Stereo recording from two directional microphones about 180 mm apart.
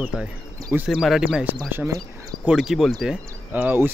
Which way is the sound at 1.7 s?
15° right (ahead or behind).